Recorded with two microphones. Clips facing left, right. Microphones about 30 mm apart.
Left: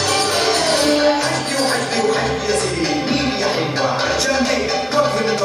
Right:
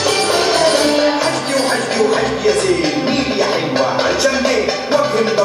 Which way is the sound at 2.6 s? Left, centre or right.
Right.